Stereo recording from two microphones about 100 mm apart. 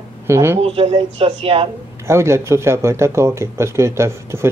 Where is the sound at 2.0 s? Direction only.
25° right (ahead or behind).